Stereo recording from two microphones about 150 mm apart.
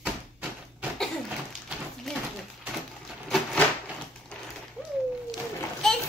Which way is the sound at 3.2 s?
Centre (ahead or behind).